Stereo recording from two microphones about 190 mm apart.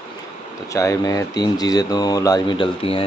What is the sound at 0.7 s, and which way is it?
Speech, 15° left (ahead or behind).